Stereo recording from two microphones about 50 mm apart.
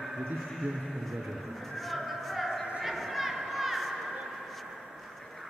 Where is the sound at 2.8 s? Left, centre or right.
Centre.